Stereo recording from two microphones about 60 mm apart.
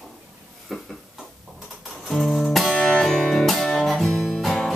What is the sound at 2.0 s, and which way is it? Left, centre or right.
Music, centre.